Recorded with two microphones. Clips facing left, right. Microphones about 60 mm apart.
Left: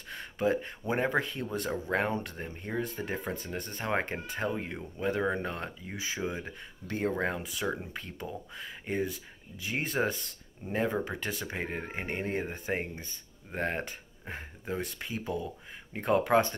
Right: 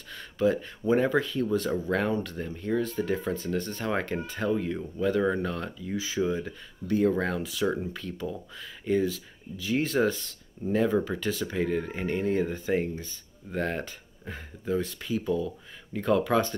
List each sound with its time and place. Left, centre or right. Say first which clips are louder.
0.1 s a sound: right 3 dB; left
0.8 s speech: right 6 dB; left
7.2 s speech: right 3 dB; left
7.6 s speech: right 6 dB; centre
7.9 s speech: right 5 dB; left